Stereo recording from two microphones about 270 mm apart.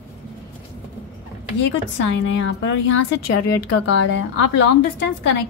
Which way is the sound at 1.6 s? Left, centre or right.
Left.